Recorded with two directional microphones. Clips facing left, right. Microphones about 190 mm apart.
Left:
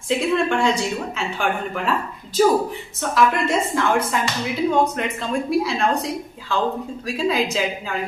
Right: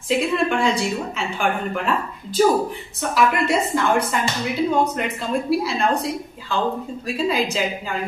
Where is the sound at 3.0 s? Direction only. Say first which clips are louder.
Even; centre (ahead or behind).